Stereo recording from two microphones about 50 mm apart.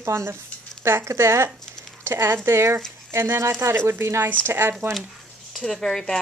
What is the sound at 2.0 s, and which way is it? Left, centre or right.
Speech, right.